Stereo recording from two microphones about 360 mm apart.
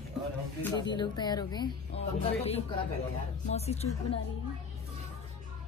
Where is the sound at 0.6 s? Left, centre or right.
Centre.